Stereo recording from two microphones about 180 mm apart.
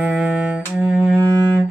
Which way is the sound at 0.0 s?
5° right (ahead or behind).